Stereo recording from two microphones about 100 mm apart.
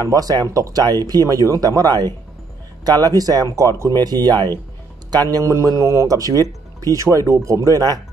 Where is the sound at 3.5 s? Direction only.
30° right (ahead or behind).